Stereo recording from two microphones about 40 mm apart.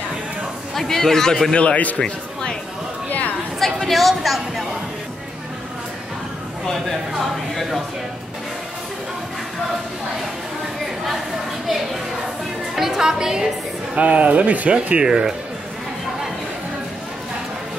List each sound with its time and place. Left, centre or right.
0.7 s a man's voice: centre
1.5 s a man's voice: left
2.0 s speech: left
3.1 s a sound: left
3.5 s a sound: centre
6.7 s speech: centre
11.6 s a woman's voice: centre
13.9 s speech: right
15.0 s speech: centre